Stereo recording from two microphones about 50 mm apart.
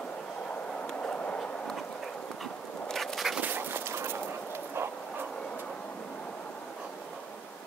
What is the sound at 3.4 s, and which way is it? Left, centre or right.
Dog, right.